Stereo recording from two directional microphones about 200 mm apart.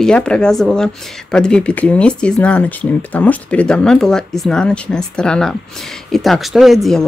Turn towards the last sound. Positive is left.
turn(degrees=0)  # may be behind; listen again after turning